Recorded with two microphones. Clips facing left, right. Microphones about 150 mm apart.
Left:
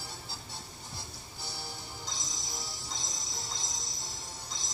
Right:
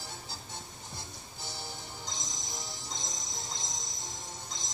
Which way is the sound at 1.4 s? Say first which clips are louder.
Right 1 dB; 20° right (ahead or behind).